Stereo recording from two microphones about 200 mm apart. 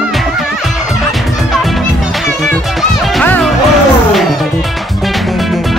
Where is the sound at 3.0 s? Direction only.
5° left (ahead or behind).